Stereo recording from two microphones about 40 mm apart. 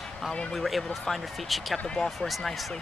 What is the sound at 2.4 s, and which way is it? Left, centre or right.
Speech, centre.